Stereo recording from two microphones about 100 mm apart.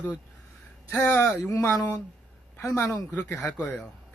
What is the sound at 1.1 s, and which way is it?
Speech, 15° left (ahead or behind).